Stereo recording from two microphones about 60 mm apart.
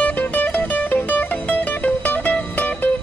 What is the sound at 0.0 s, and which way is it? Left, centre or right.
Music, left.